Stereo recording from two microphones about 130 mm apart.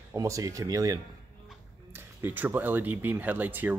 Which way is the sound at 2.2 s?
15° right (ahead or behind).